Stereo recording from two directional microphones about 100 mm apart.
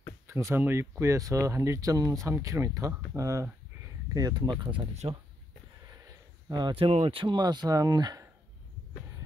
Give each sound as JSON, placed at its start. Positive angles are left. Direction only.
{"t": 0.3, "sound": "speech", "side_deg": -30}
{"t": 6.0, "sound": "a sound", "side_deg": -45}
{"t": 6.7, "sound": "speech", "side_deg": -80}